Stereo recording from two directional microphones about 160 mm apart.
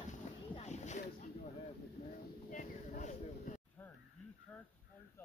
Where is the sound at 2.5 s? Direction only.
50° left (ahead or behind).